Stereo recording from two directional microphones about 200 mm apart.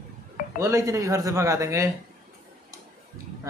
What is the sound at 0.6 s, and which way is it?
Speech, 15° right (ahead or behind).